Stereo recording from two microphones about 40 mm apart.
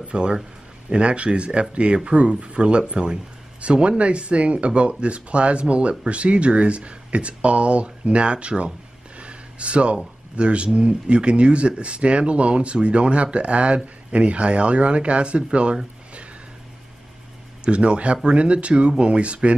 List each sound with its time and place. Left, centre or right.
0.1 s speech: right
9.2 s a sound: right
10.3 s speech: right
17.6 s speech: right